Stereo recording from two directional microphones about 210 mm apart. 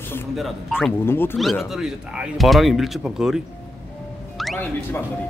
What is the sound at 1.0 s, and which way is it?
Speech, 10° left (ahead or behind).